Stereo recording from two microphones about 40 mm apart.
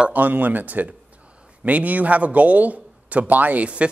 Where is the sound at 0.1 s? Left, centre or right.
Right.